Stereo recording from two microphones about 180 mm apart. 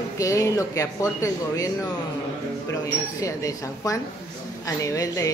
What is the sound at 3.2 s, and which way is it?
Speech, 20° left (ahead or behind).